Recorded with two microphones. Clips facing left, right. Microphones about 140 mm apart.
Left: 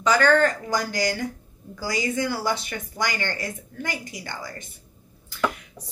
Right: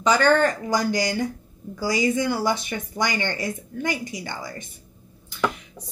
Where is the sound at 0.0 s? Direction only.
20° right (ahead or behind).